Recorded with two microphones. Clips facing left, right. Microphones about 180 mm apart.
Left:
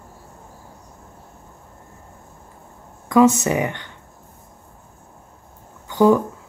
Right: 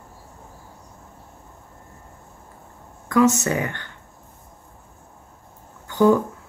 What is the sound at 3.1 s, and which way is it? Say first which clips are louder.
Speech: left 3 dB; 20° left (ahead or behind).